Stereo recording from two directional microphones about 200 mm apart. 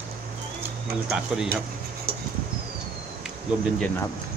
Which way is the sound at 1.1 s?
Centre (ahead or behind).